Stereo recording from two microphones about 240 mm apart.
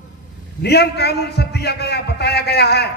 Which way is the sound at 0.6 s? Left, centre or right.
Left.